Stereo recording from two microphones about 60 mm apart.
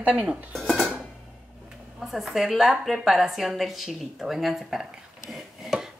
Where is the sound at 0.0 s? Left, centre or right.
Right.